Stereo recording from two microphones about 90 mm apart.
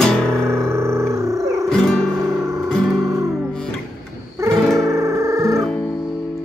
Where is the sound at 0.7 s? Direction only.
30° right (ahead or behind).